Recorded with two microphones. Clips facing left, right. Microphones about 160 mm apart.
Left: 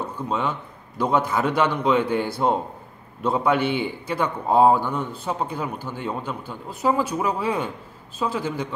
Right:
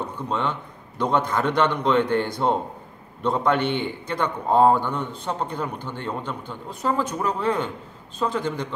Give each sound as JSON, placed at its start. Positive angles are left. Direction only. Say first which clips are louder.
{"t": 0.0, "sound": "a man's voice", "louder": "left 1 dB", "side_deg": 5}